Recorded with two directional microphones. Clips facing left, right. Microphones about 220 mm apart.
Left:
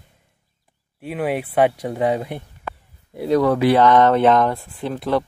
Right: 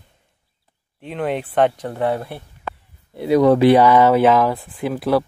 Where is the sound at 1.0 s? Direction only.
5° left (ahead or behind).